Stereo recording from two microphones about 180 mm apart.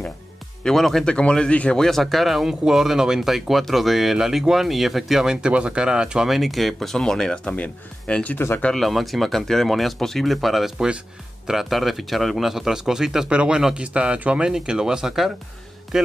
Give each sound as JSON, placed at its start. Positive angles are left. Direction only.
{"t": 0.7, "sound": "speech", "side_deg": 0}